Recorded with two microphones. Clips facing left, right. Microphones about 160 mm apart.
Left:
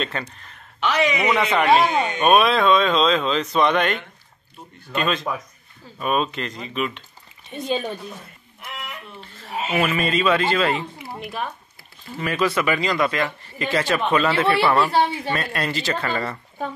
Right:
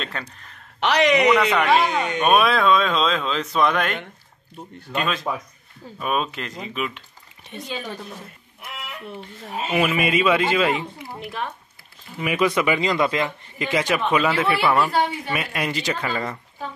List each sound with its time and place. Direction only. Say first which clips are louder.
0.0 s speech: left 4 dB; centre (ahead or behind)
0.7 s a man's voice: right 3 dB; 75° right (ahead or behind)
1.3 s a man's voice: even; centre (ahead or behind)
9.8 s a man's voice: right 1 dB; 10° right (ahead or behind)
11.1 s speech: left 1 dB; 5° left (ahead or behind)
12.2 s a man's voice: right 1 dB; 15° right (ahead or behind)
14.9 s speech: left 2 dB; 30° left (ahead or behind)
15.3 s a man's voice: left 1 dB; 10° right (ahead or behind)